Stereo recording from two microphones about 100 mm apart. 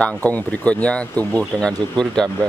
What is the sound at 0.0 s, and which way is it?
Speech, 15° left (ahead or behind).